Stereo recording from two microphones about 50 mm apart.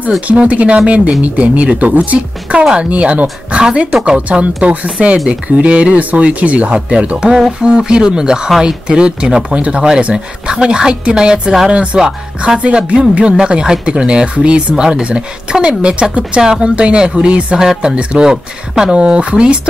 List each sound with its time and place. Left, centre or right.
0.3 s speech: right